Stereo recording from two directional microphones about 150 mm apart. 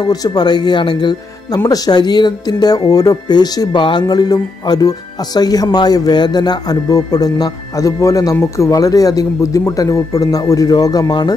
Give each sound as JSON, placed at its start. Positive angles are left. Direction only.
{"t": 0.0, "sound": "speech", "side_deg": 25}